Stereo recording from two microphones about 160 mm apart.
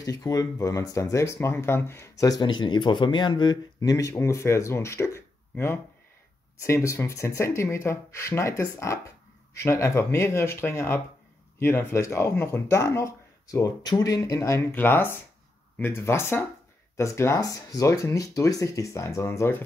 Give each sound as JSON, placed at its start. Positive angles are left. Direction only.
{"t": 0.0, "sound": "speech", "side_deg": 25}